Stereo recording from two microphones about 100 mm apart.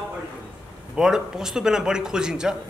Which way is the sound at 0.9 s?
5° right (ahead or behind).